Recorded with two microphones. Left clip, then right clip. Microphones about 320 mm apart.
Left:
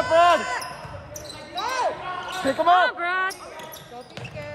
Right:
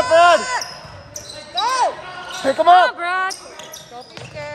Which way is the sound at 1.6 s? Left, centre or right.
Right.